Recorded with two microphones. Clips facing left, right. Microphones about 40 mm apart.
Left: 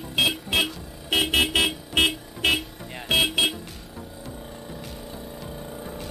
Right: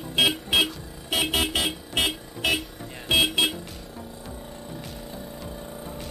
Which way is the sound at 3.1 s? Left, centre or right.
Centre.